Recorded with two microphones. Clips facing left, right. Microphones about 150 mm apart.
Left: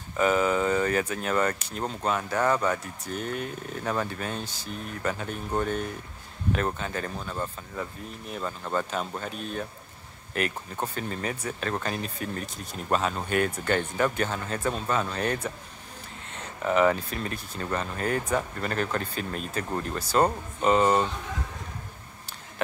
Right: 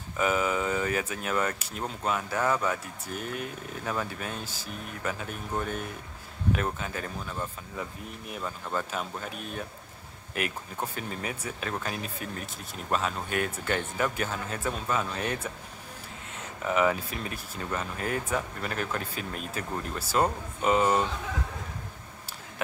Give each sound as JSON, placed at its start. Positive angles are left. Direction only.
{"t": 0.2, "sound": "speech", "side_deg": -5}